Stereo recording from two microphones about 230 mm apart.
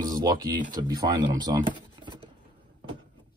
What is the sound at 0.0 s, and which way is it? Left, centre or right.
Speech, centre.